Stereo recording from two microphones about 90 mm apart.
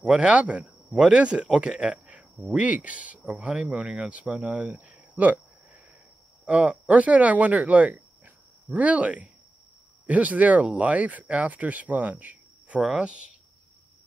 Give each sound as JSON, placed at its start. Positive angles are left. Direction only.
{"t": 0.0, "sound": "speech", "side_deg": -10}
{"t": 6.4, "sound": "speech", "side_deg": -15}